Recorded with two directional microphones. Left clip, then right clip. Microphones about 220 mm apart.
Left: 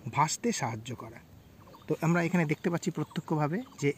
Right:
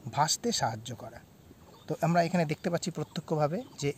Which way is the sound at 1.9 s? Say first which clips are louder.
Right 2 dB; 5° right (ahead or behind).